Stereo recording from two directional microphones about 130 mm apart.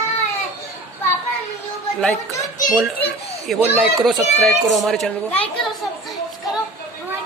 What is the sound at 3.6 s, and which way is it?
Speech, 15° right (ahead or behind).